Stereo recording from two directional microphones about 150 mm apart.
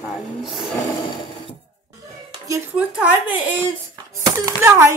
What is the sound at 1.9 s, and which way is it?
Dishes, 20° right (ahead or behind).